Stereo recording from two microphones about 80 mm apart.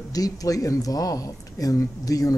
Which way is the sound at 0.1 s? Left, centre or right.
Left.